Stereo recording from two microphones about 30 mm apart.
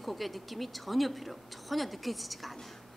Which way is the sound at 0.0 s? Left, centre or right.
Centre.